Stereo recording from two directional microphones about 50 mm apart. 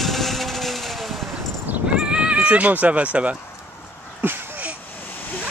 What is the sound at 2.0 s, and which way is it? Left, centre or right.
Neigh, centre.